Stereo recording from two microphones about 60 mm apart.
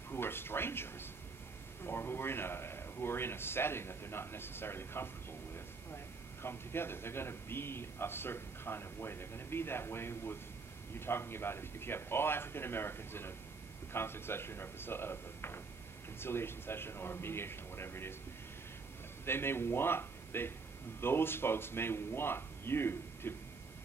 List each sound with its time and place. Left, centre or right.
0.1 s a man's voice: left
19.2 s a man's voice: left